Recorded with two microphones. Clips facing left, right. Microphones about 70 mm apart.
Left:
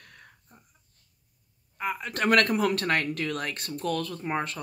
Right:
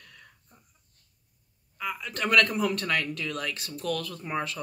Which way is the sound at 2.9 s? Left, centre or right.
Left.